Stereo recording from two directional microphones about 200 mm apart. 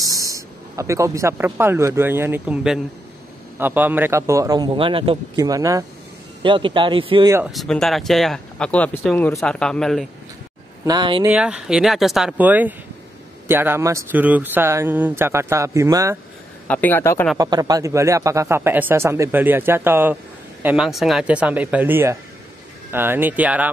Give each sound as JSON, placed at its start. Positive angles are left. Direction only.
{"t": 0.0, "sound": "speech", "side_deg": -15}
{"t": 7.5, "sound": "speech", "side_deg": 0}
{"t": 10.9, "sound": "speech", "side_deg": -25}
{"t": 11.2, "sound": "speech", "side_deg": -5}
{"t": 16.6, "sound": "a man's voice", "side_deg": 10}
{"t": 17.4, "sound": "speech", "side_deg": -20}